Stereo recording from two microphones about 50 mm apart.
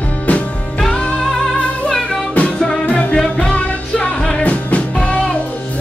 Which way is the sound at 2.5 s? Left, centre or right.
Centre.